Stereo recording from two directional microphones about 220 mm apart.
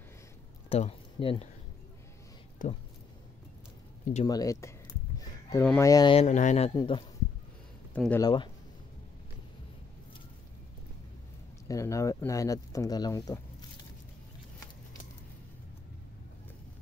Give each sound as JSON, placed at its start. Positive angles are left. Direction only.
{"t": 0.7, "sound": "speech", "side_deg": 25}
{"t": 2.6, "sound": "speech", "side_deg": 40}
{"t": 4.0, "sound": "speech", "side_deg": 30}
{"t": 4.3, "sound": "speech", "side_deg": 15}
{"t": 7.9, "sound": "speech", "side_deg": 5}
{"t": 8.2, "sound": "speech", "side_deg": 20}
{"t": 11.6, "sound": "speech", "side_deg": 15}